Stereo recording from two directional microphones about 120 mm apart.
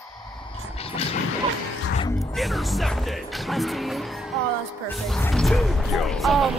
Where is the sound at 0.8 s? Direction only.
55° left (ahead or behind).